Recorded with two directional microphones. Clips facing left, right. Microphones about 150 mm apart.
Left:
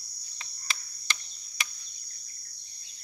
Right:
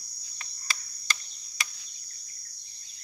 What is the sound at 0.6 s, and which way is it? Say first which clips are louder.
Tick-tock: right 1 dB; 20° left (ahead or behind).